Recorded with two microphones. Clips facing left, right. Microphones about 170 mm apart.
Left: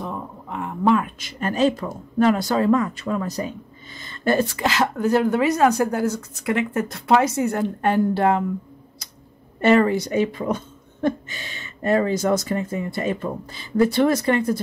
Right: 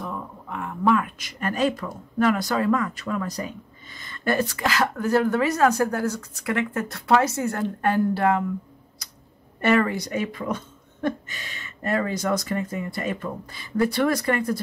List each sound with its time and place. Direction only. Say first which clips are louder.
0.0 s speech: left 2 dB; 25° left (ahead or behind)
9.6 s speech: left 4 dB; 25° left (ahead or behind)